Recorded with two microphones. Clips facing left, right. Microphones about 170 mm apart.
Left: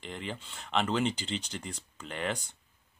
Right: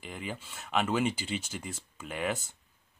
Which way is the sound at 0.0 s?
5° right (ahead or behind).